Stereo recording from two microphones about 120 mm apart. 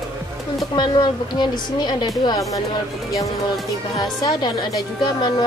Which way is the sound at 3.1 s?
Centre (ahead or behind).